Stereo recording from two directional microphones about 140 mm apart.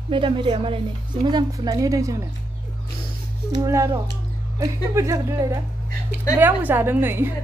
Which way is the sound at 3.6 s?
20° right (ahead or behind).